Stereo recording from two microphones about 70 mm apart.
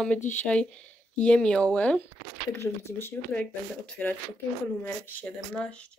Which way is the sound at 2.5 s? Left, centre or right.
Left.